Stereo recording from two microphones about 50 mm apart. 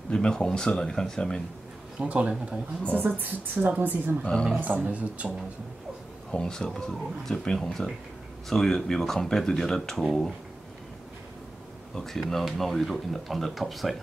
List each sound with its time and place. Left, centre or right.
0.1 s speech: centre
2.0 s a woman's voice: right
4.7 s speech: right
6.3 s speech: centre
11.9 s speech: centre